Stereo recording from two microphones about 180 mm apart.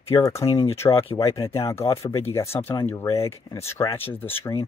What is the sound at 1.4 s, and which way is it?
Speech, 30° left (ahead or behind).